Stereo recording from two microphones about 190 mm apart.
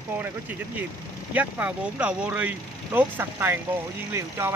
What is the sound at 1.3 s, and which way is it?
Speech, 10° right (ahead or behind).